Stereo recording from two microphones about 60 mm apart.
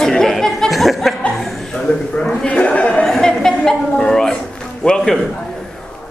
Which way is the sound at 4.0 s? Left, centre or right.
Centre.